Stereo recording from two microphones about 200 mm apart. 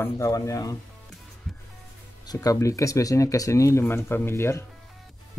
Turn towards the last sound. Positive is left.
turn(degrees=15)  # may be behind; listen again after turning